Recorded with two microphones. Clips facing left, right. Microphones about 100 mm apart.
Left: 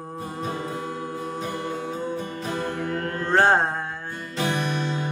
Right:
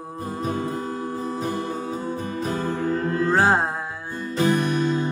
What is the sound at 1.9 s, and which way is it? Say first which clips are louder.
Music: right 1 dB; 5° right (ahead or behind).